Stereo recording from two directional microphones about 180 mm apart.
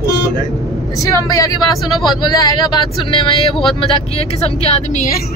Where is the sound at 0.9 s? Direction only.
20° left (ahead or behind); by 5.0 s 35° left (ahead or behind).